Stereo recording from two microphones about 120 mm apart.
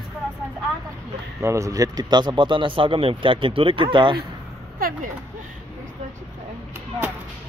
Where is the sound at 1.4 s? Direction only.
25° right (ahead or behind); by 4.2 s 40° right (ahead or behind).